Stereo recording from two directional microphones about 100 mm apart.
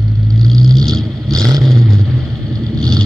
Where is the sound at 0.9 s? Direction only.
Centre (ahead or behind).